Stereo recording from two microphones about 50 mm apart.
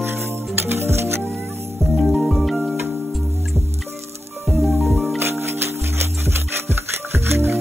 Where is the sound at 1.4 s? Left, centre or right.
Right.